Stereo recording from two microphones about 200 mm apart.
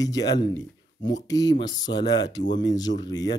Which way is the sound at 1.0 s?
65° left (ahead or behind).